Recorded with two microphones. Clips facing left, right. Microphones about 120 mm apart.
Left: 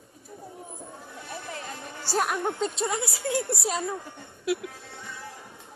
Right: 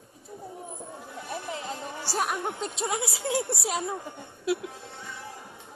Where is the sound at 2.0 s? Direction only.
5° right (ahead or behind).